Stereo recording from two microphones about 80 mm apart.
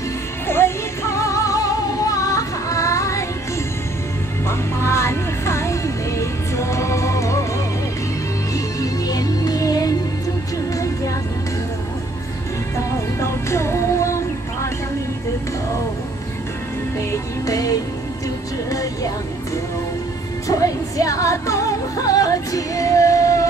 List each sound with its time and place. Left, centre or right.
0.5 s music: left
4.5 s music: left
8.5 s music: left
12.7 s music: left
17.1 s music: left